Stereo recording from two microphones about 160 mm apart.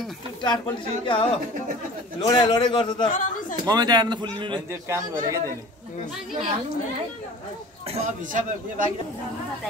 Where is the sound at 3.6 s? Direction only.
25° right (ahead or behind).